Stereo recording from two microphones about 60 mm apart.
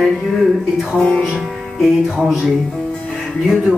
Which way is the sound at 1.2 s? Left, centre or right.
Centre.